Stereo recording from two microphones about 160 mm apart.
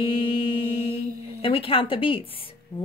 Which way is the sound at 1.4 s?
35° left (ahead or behind).